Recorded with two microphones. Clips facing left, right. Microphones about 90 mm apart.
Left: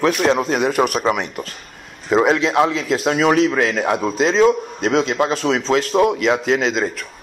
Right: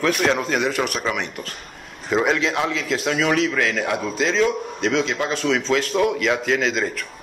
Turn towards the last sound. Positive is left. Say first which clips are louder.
# left 3 dB
turn(degrees=20)  # may be behind; listen again after turning